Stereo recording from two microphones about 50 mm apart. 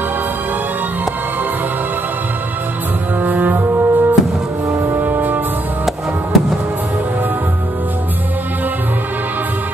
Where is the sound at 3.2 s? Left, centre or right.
Right.